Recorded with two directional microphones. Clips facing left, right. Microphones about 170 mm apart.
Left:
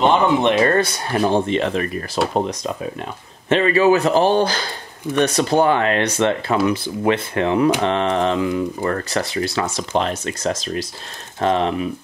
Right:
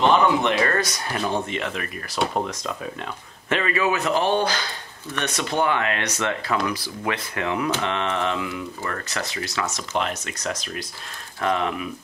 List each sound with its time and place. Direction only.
0.0 s speech: 25° left (ahead or behind)